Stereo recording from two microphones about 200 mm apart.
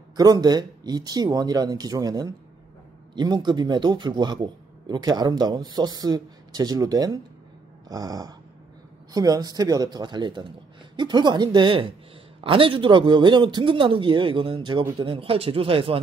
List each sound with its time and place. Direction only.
0.1 s a man's voice: 20° right (ahead or behind)
7.9 s dog: 20° right (ahead or behind)
9.1 s a man's voice: 20° right (ahead or behind)